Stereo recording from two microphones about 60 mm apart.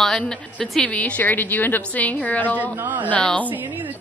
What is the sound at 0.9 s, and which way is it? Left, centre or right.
A woman's voice, left.